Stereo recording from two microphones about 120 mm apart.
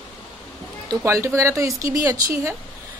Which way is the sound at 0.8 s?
25° right (ahead or behind).